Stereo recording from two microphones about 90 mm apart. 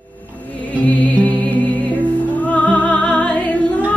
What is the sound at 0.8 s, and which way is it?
Music, 20° left (ahead or behind).